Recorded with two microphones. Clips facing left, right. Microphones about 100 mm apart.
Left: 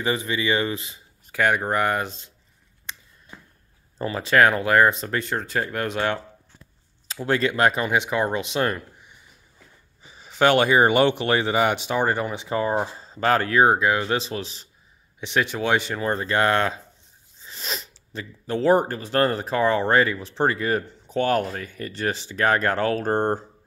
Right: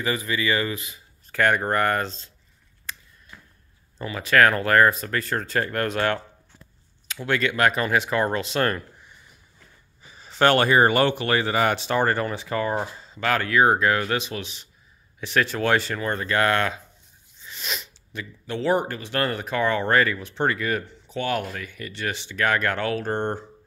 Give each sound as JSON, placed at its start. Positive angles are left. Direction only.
{"t": 0.0, "sound": "speech", "side_deg": 25}
{"t": 1.3, "sound": "speech", "side_deg": 10}
{"t": 2.9, "sound": "a sound", "side_deg": 20}
{"t": 4.0, "sound": "speech", "side_deg": 30}
{"t": 7.1, "sound": "speech", "side_deg": 30}
{"t": 12.9, "sound": "speech", "side_deg": 35}
{"t": 13.7, "sound": "speech", "side_deg": 20}
{"t": 15.1, "sound": "speech", "side_deg": 20}